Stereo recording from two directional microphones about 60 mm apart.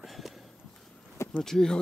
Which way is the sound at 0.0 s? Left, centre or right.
Centre.